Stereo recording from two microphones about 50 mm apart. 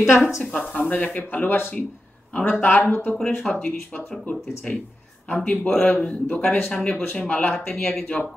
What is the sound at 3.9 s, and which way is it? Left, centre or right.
Speech, left.